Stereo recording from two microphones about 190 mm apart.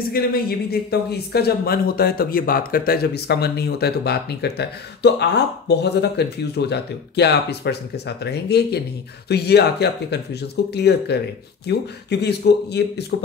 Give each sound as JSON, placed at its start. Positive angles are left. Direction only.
{"t": 0.1, "sound": "speech", "side_deg": 55}